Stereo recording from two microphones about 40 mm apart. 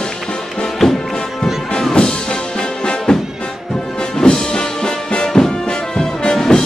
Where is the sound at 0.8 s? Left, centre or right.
Centre.